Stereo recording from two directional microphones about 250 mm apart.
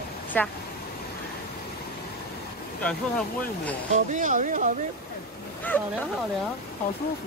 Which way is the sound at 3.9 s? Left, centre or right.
Right.